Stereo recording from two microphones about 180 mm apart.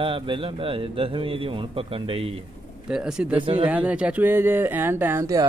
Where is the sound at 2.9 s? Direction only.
5° right (ahead or behind).